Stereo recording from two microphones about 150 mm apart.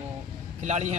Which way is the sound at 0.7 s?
50° right (ahead or behind).